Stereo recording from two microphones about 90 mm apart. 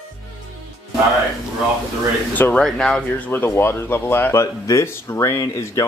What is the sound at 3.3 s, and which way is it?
Speech, 25° left (ahead or behind).